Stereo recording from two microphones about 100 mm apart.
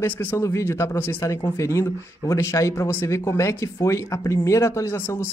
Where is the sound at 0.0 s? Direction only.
20° left (ahead or behind).